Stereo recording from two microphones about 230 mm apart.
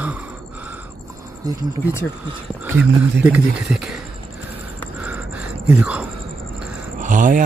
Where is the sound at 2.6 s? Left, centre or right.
Centre.